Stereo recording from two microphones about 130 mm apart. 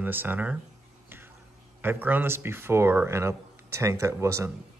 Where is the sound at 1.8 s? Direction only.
15° right (ahead or behind).